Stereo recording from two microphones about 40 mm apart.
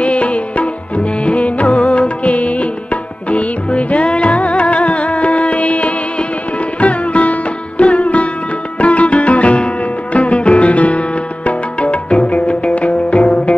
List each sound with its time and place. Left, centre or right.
0.0 s music: left
6.8 s sitar: left
8.7 s music: left